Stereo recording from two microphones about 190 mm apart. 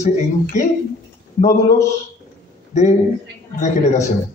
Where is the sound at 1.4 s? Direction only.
40° left (ahead or behind).